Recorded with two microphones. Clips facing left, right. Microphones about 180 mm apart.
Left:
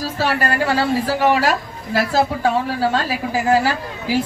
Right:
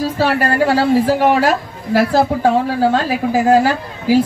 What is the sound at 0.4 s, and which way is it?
Speech, 45° right (ahead or behind).